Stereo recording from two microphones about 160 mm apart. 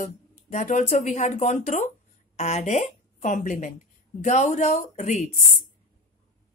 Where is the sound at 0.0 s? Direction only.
50° left (ahead or behind).